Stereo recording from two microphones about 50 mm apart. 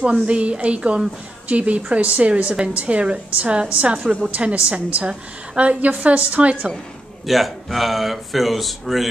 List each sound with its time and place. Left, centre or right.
0.0 s a woman's voice: right
7.2 s speech: centre